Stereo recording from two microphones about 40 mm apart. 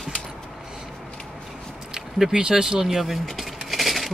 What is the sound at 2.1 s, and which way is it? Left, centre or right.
Speech, centre.